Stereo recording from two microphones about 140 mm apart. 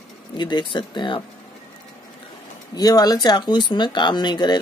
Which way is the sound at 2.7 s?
25° left (ahead or behind).